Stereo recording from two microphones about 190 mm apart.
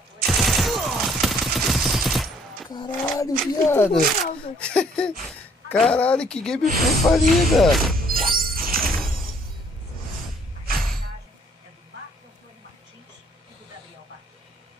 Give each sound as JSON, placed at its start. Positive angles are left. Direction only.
{"t": 0.3, "sound": "fusillade", "side_deg": 0}
{"t": 2.7, "sound": "roaring cats", "side_deg": 20}
{"t": 4.6, "sound": "speech", "side_deg": 5}
{"t": 8.1, "sound": "music", "side_deg": -50}